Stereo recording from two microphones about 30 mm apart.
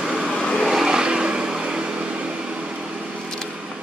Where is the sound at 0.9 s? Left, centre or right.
Right.